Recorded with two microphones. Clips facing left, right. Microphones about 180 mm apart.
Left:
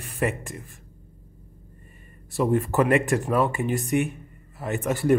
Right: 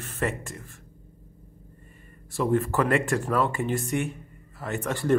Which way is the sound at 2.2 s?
15° left (ahead or behind).